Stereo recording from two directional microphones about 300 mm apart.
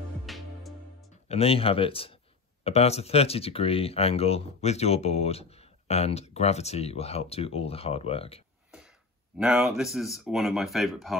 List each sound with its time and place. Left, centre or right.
0.3 s music: centre
1.3 s speech: centre
9.4 s speech: centre